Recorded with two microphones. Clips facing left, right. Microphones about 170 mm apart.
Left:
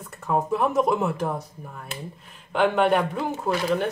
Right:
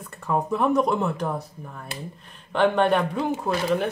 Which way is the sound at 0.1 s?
5° left (ahead or behind).